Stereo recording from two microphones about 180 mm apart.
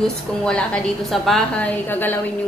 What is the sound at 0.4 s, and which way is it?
A woman's voice, 5° left (ahead or behind).